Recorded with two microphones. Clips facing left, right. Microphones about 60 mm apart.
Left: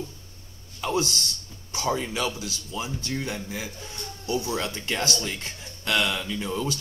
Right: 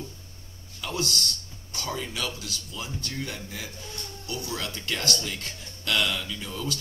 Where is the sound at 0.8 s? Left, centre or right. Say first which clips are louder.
Left 4 dB; left.